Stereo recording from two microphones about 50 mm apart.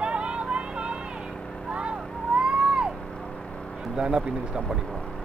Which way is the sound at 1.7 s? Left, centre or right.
Right.